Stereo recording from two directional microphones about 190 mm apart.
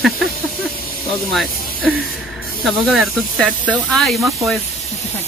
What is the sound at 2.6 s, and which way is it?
Speech, centre (ahead or behind).